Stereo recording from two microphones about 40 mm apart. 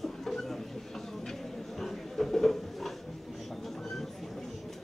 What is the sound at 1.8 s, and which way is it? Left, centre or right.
Speech, centre.